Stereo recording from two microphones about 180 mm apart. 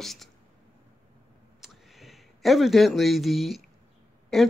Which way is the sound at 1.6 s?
Centre (ahead or behind).